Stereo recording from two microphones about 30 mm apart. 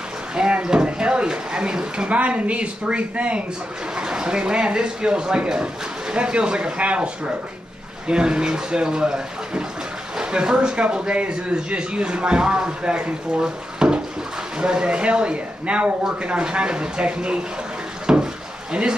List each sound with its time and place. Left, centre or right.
0.4 s speech: right
2.0 s speech: right
3.9 s speech: right
8.1 s a man's voice: right
10.8 s speech: right
13.4 s a sound: right
14.6 s speech: right
18.0 s drawer open or close: right